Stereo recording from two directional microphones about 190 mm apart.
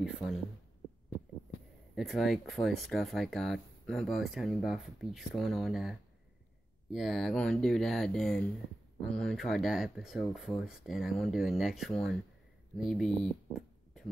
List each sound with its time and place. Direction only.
0.0 s speech: centre (ahead or behind)
2.0 s speech: centre (ahead or behind)
13.2 s a sound: centre (ahead or behind)